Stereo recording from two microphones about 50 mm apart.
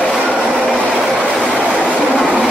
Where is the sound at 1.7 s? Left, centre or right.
Right.